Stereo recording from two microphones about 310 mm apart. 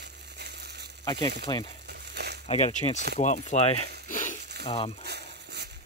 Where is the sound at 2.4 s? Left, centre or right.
Centre.